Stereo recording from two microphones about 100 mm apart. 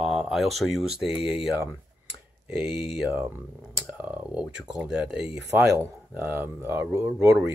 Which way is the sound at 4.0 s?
10° right (ahead or behind).